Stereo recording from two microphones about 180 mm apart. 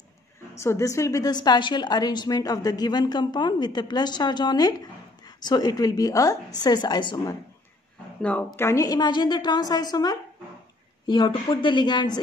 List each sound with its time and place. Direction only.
0.6 s a woman's voice: 15° left (ahead or behind)
8.2 s a woman's voice: 5° left (ahead or behind); by 12.2 s 25° left (ahead or behind)